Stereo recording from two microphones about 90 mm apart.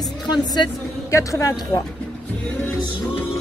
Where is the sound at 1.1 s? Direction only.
35° left (ahead or behind).